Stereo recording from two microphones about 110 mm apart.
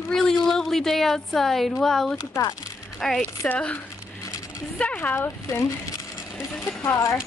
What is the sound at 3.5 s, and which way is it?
A child's voice, 15° left (ahead or behind).